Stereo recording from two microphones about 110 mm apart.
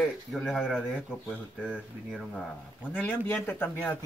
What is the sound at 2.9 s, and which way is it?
Speech, 15° left (ahead or behind).